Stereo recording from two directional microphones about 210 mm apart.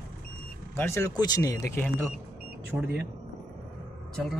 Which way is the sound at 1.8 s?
5° left (ahead or behind).